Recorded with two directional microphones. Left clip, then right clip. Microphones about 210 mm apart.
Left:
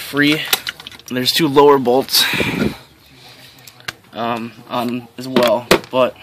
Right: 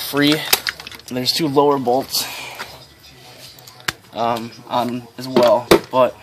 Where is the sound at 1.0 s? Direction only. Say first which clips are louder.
Left 3 dB; 20° left (ahead or behind).